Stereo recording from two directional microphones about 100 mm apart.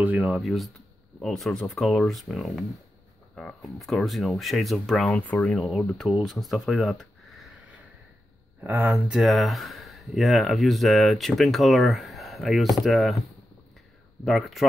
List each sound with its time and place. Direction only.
0.0 s speech: 15° right (ahead or behind)
0.4 s speech: centre (ahead or behind)
8.5 s speech: 20° right (ahead or behind)
9.1 s speech: centre (ahead or behind)
14.2 s speech: centre (ahead or behind)